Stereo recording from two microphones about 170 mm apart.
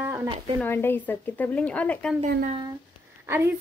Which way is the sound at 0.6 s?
15° left (ahead or behind).